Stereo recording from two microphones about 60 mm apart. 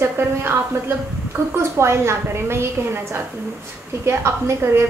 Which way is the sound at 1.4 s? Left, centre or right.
Right.